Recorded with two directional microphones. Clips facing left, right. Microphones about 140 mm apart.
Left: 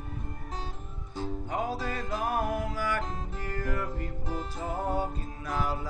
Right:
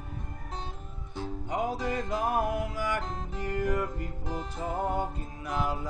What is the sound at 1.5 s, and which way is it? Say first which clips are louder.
Music: right 3 dB; 20° right (ahead or behind).